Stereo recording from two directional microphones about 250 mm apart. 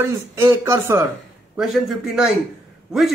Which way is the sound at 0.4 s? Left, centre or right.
Centre.